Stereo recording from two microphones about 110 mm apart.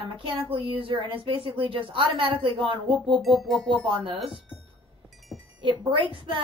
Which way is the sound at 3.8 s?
50° right (ahead or behind).